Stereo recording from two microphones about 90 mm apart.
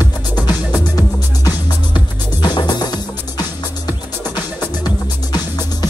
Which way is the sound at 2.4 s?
55° left (ahead or behind).